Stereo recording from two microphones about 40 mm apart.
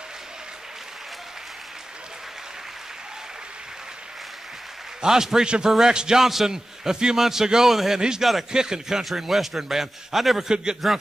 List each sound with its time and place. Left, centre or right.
5.0 s a man's voice: centre
10.5 s speech: centre